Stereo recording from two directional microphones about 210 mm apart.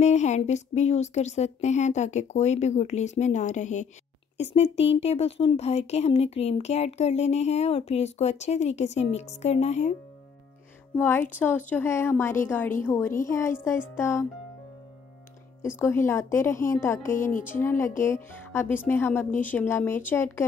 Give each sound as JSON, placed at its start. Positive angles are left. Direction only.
{"t": 0.0, "sound": "speech", "side_deg": 35}
{"t": 11.0, "sound": "speech", "side_deg": 10}
{"t": 15.6, "sound": "speech", "side_deg": 10}